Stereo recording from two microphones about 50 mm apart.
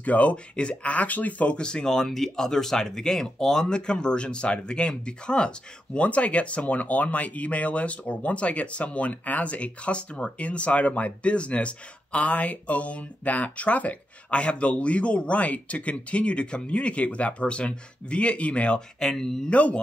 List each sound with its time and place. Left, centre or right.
0.0 s speech: left
1.6 s speech: centre
18.9 s speech: centre
19.5 s speech: left